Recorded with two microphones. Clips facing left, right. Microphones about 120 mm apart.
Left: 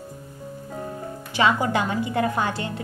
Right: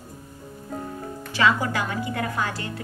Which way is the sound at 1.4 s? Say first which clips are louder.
Left 1 dB; 20° left (ahead or behind).